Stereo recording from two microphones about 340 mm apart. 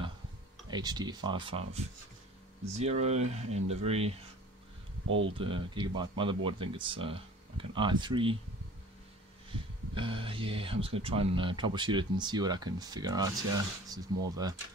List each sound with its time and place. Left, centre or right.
0.7 s speech: centre
2.8 s speech: centre
5.0 s speech: right
5.3 s speech: centre
9.9 s speech: centre